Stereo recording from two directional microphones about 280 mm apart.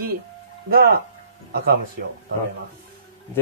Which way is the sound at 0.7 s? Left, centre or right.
Right.